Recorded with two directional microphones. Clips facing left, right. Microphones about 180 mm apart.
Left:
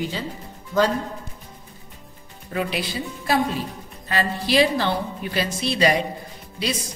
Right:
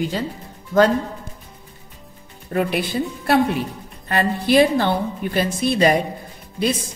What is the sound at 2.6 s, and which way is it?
A woman's voice, 55° right (ahead or behind).